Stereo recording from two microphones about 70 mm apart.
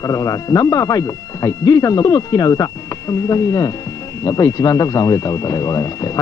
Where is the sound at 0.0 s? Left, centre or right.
Left.